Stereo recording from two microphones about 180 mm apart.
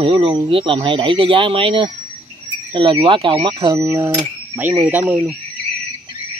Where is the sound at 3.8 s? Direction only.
15° right (ahead or behind).